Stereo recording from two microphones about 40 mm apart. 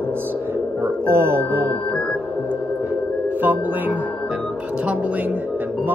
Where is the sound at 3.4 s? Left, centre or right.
Right.